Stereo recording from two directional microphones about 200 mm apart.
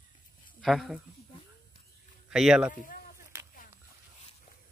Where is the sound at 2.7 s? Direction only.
40° left (ahead or behind).